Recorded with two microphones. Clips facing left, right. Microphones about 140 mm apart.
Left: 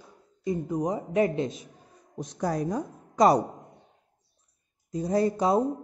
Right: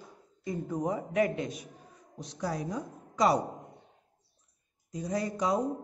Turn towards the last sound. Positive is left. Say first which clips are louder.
# left 6 dB
turn(degrees=30)  # may be behind; listen again after turning